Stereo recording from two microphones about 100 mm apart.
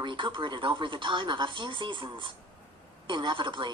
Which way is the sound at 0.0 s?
55° right (ahead or behind).